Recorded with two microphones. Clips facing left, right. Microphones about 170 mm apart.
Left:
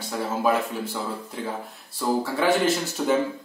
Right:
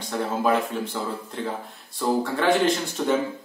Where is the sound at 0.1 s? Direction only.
5° left (ahead or behind).